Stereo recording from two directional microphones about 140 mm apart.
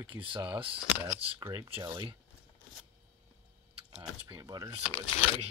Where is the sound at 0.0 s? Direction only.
35° right (ahead or behind).